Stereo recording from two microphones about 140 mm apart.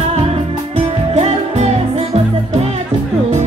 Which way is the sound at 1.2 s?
45° right (ahead or behind).